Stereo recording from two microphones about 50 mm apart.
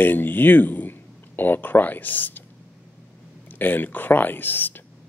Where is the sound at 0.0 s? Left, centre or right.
Left.